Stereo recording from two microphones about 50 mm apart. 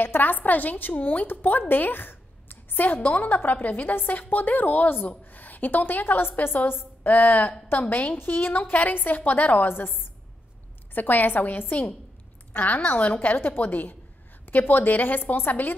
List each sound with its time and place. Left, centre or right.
0.0 s a woman's voice: left
8.2 s a woman's voice: left
11.0 s a woman's voice: left